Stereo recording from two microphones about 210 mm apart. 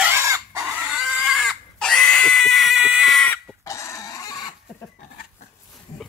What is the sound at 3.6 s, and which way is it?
Pig, 15° left (ahead or behind).